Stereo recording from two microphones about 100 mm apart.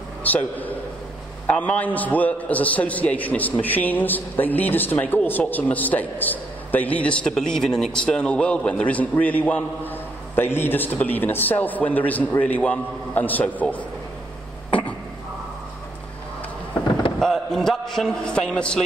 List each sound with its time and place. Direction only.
0.2 s a man's voice: 15° left (ahead or behind)
17.2 s a man's voice: 5° left (ahead or behind)